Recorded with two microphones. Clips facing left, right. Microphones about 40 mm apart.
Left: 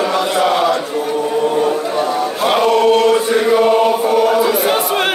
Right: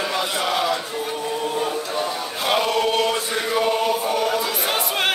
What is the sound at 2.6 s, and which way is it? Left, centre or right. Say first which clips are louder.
Chant: left 9 dB; centre.